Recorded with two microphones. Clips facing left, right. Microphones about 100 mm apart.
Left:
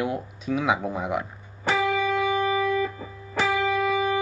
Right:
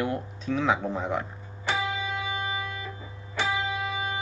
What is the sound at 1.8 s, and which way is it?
Music, 55° left (ahead or behind).